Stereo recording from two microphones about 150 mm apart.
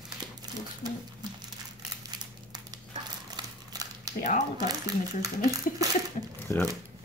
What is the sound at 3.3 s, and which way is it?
Crumpling, 25° right (ahead or behind).